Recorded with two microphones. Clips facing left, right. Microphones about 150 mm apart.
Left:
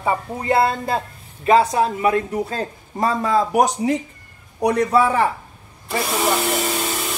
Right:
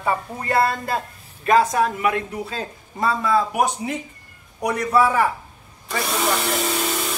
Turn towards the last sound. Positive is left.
turn(degrees=0)  # may be behind; listen again after turning